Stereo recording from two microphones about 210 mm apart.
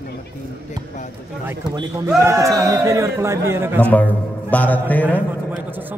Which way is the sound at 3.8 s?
10° left (ahead or behind).